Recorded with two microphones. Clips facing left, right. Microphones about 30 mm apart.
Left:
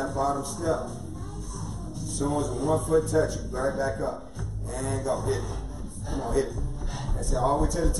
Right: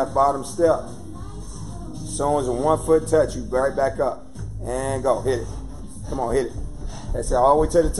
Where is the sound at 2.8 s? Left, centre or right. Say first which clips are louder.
Right 6 dB; right.